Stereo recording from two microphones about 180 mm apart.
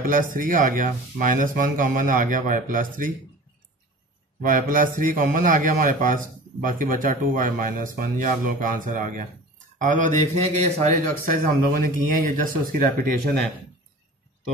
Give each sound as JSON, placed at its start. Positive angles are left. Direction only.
{"t": 0.0, "sound": "a man's voice", "side_deg": -50}
{"t": 4.4, "sound": "a man's voice", "side_deg": -50}